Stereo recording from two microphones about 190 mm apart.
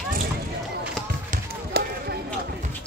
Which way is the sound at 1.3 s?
55° right (ahead or behind).